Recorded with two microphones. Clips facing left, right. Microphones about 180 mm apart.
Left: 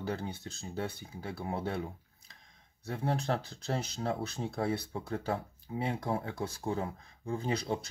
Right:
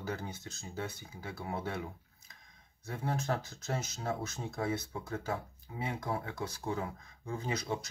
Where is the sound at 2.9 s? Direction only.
35° left (ahead or behind).